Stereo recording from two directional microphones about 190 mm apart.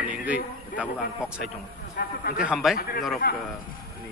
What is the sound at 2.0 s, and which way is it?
Speech, 55° left (ahead or behind).